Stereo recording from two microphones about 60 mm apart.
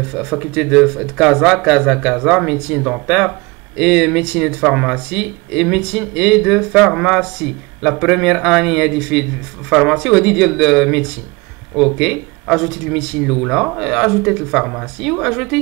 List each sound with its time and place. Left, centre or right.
0.0 s speech: centre